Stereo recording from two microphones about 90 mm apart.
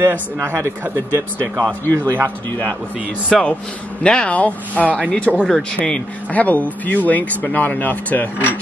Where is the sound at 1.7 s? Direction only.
20° left (ahead or behind).